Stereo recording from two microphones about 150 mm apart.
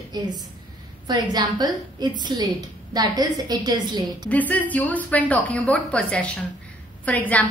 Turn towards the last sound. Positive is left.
turn(degrees=10)  # may be behind; listen again after turning